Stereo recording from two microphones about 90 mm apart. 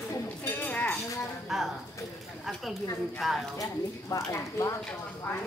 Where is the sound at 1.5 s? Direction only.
5° right (ahead or behind).